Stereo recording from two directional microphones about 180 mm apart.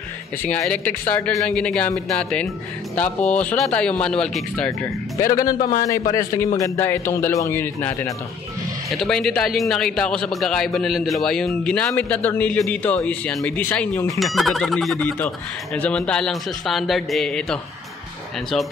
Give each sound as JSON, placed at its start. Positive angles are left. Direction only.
{"t": 0.5, "sound": "a man's voice", "side_deg": 10}
{"t": 5.2, "sound": "a man's voice", "side_deg": 20}
{"t": 14.2, "sound": "speech", "side_deg": 0}